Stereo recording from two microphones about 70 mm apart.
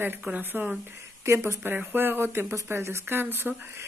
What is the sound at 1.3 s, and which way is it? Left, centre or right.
Speech, right.